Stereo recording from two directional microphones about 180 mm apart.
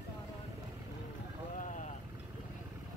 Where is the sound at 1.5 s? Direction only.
45° left (ahead or behind).